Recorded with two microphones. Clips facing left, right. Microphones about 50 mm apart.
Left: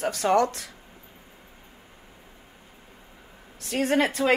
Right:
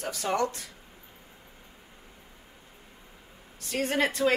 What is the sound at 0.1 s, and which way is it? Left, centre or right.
Speech, left.